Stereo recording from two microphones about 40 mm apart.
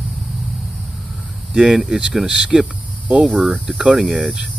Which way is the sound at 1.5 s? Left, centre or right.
Centre.